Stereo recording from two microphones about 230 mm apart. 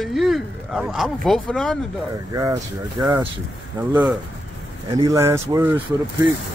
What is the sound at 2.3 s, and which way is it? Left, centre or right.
Speech, centre.